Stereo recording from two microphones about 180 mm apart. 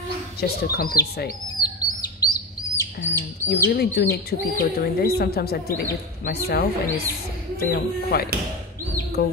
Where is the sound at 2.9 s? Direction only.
75° left (ahead or behind).